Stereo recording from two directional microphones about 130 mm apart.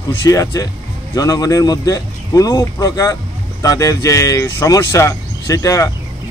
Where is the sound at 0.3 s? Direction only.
25° left (ahead or behind).